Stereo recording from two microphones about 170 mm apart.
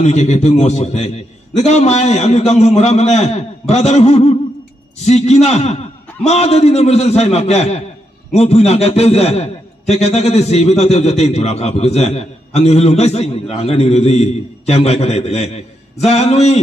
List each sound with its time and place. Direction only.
0.0 s a man's voice: 40° left (ahead or behind)